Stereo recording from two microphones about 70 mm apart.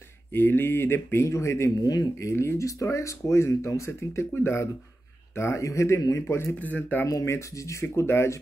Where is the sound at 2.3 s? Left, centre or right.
Left.